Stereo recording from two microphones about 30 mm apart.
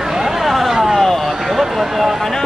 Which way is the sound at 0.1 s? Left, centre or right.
Centre.